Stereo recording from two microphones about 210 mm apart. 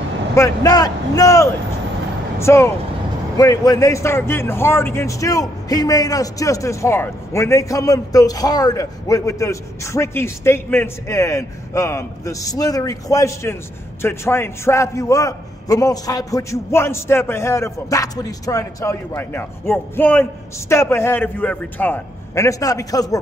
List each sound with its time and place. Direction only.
0.3 s speech: 15° left (ahead or behind)